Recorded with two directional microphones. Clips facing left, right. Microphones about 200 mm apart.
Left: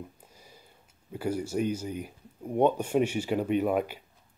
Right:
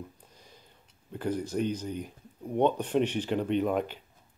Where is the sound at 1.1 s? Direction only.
10° left (ahead or behind).